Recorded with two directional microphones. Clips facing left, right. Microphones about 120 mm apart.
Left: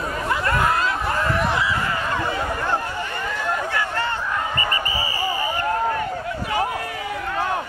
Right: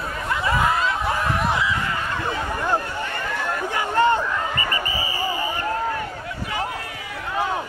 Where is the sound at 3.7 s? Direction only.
15° right (ahead or behind).